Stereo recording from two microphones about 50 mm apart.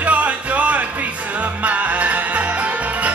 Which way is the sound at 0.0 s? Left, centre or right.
Right.